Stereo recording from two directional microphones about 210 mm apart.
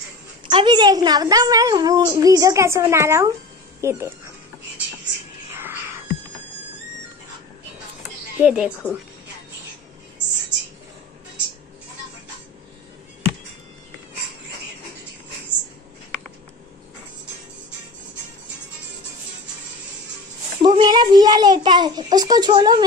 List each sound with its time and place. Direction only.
0.5 s a woman's voice: 25° right (ahead or behind)
5.5 s whispering: 10° right (ahead or behind)
8.4 s a woman's voice: 5° right (ahead or behind)
20.6 s a child's voice: 20° right (ahead or behind)